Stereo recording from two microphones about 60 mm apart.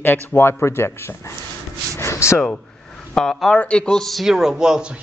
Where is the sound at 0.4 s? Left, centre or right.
Left.